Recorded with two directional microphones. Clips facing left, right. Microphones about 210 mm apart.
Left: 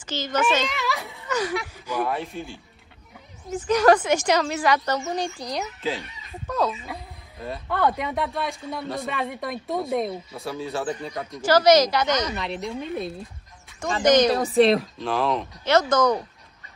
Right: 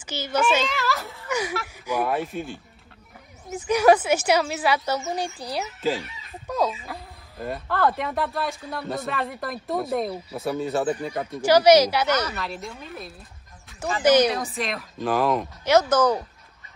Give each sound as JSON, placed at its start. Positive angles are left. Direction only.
{"t": 0.0, "sound": "a child's voice", "side_deg": -10}
{"t": 0.7, "sound": "speech", "side_deg": 0}
{"t": 2.3, "sound": "speech", "side_deg": -55}
{"t": 3.4, "sound": "speech", "side_deg": -10}
{"t": 6.5, "sound": "speech", "side_deg": -10}
{"t": 6.9, "sound": "speech", "side_deg": 0}
{"t": 14.0, "sound": "speech", "side_deg": -10}
{"t": 14.3, "sound": "a woman's voice", "side_deg": 35}
{"t": 15.0, "sound": "speech", "side_deg": 0}